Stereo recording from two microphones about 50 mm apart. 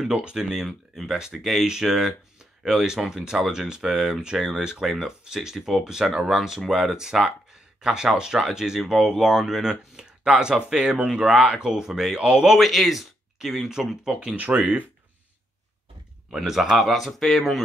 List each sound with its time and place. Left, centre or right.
0.1 s speech: centre
12.5 s speech: centre
14.3 s speech: right
16.3 s speech: centre